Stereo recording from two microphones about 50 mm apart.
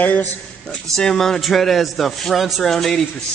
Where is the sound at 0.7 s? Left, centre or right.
Centre.